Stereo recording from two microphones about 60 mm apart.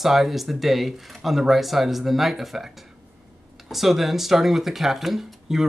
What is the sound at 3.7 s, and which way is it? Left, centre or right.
Speech, centre.